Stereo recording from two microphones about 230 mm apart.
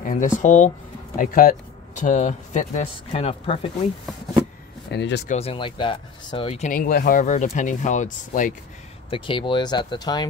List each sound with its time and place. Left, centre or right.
0.0 s speech: left
4.9 s speech: left
5.3 s speech: left
9.1 s speech: left